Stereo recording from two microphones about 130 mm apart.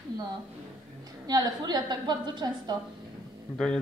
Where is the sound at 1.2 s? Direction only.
30° right (ahead or behind).